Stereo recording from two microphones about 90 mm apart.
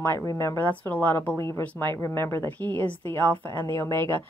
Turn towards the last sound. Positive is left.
turn(degrees=25)  # may be behind; listen again after turning